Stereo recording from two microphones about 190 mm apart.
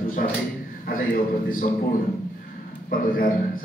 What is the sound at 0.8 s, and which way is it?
Speech, 50° left (ahead or behind).